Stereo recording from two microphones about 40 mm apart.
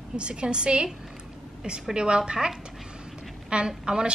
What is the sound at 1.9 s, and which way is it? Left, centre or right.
A woman's voice, right.